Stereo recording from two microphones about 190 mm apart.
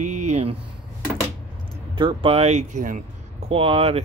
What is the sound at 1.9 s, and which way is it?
Speech, 30° right (ahead or behind).